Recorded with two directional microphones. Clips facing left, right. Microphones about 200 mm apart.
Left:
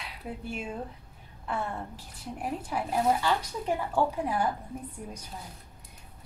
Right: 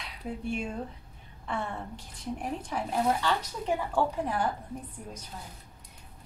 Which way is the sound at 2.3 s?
5° left (ahead or behind).